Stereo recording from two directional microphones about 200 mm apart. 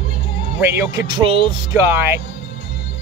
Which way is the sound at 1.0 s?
25° right (ahead or behind).